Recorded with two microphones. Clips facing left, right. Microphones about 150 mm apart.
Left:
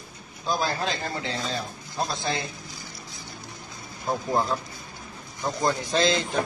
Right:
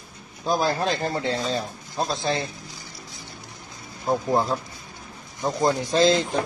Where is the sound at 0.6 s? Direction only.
40° right (ahead or behind).